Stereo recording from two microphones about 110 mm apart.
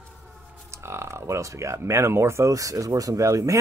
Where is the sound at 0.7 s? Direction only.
25° right (ahead or behind).